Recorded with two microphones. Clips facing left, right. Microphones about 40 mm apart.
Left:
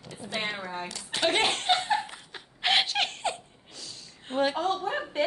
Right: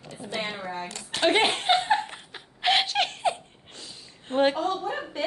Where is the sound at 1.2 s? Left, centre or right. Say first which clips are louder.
Right 3 dB; centre.